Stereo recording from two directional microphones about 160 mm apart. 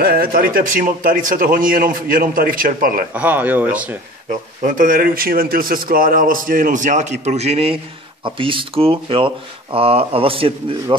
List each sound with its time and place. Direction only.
0.0 s speech: 70° right (ahead or behind)
3.1 s speech: 10° right (ahead or behind)
4.3 s speech: 55° right (ahead or behind); by 11.0 s 35° right (ahead or behind)